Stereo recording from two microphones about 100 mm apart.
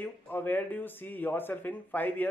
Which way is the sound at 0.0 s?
20° left (ahead or behind).